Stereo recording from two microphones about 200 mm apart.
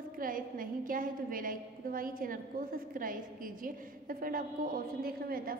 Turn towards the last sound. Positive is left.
turn(degrees=-50)  # may be behind; listen again after turning